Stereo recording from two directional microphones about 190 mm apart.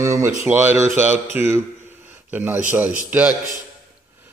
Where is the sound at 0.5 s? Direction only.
10° right (ahead or behind).